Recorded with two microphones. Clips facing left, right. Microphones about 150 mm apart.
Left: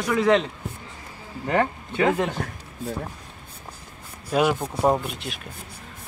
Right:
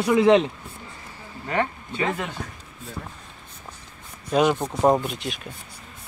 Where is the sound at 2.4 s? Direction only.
65° left (ahead or behind).